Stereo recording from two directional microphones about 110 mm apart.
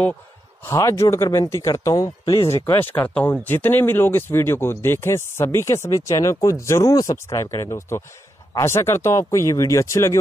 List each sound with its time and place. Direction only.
0.7 s speech: 30° left (ahead or behind)